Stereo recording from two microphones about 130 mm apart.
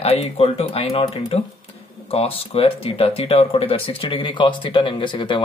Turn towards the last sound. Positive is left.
turn(degrees=40)  # may be behind; listen again after turning